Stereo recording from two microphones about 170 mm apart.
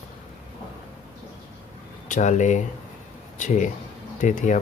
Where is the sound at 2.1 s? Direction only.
45° left (ahead or behind).